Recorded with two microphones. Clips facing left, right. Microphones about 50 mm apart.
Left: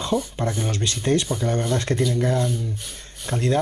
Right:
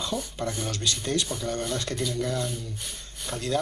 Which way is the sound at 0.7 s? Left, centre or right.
Left.